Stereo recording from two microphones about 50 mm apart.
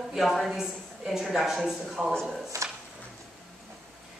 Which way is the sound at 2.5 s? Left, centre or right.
Right.